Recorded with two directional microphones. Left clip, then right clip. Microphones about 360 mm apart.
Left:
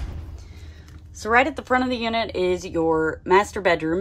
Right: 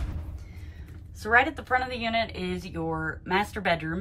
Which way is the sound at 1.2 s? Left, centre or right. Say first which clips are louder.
Left 3 dB; centre.